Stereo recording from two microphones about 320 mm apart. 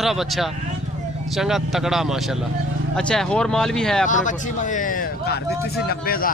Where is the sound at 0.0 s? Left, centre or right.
Centre.